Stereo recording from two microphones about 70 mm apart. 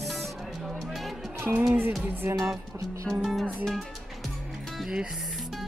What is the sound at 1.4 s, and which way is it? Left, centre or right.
Music, right.